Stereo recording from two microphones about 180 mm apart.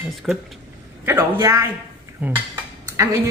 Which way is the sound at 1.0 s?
15° right (ahead or behind).